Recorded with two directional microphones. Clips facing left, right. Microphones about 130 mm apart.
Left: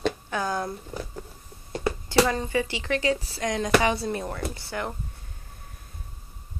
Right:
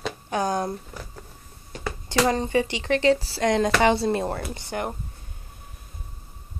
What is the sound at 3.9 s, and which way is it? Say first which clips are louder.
Speech: right 6 dB; 30° right (ahead or behind).